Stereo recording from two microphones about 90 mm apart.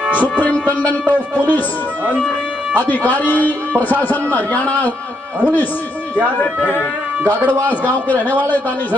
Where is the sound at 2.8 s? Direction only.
20° left (ahead or behind).